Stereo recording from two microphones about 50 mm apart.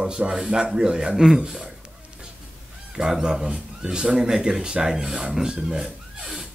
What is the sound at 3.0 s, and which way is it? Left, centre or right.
Speech, centre.